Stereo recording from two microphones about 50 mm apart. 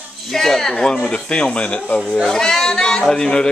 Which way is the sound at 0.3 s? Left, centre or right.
Centre.